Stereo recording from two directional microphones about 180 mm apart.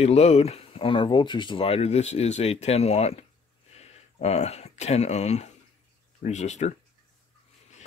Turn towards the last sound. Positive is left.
turn(degrees=40)  # may be behind; listen again after turning